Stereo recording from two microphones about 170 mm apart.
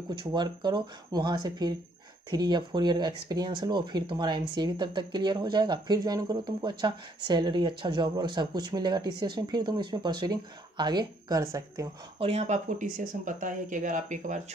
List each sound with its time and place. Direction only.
0.1 s speech: 25° right (ahead or behind)
12.2 s speech: 40° right (ahead or behind)